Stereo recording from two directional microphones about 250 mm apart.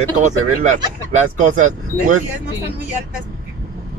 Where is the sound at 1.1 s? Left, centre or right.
Right.